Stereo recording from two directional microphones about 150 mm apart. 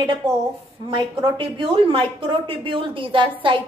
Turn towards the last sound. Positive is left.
turn(degrees=-35)  # may be behind; listen again after turning